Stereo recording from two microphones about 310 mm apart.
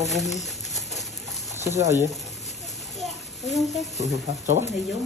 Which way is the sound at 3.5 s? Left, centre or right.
Centre.